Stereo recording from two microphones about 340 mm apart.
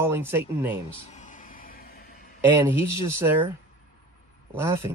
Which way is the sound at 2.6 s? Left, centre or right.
Centre.